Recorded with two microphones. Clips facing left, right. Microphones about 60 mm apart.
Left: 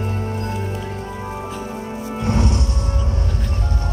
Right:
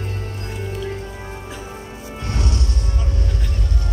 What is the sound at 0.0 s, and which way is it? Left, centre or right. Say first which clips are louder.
Music: left 6 dB; left.